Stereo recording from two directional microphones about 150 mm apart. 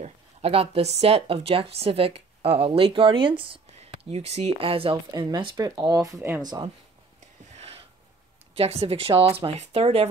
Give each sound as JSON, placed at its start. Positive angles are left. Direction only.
{"t": 0.0, "sound": "speech", "side_deg": -40}
{"t": 6.4, "sound": "speech", "side_deg": -30}
{"t": 7.5, "sound": "a sound", "side_deg": -40}
{"t": 8.5, "sound": "speech", "side_deg": -40}